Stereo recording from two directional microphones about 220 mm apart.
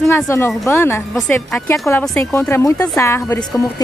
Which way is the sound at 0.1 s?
10° left (ahead or behind).